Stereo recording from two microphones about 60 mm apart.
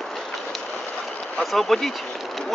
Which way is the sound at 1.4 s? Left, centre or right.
Centre.